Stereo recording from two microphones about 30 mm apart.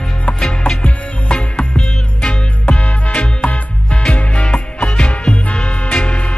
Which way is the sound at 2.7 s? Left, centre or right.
Left.